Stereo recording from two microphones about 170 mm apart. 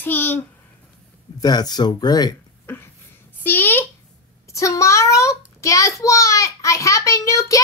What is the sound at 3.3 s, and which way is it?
A child's voice, 10° left (ahead or behind).